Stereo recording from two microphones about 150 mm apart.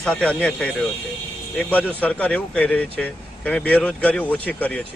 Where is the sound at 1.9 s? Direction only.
10° left (ahead or behind).